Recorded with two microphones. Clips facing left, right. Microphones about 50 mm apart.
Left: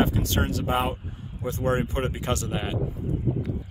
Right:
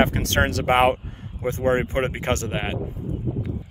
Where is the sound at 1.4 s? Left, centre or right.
Right.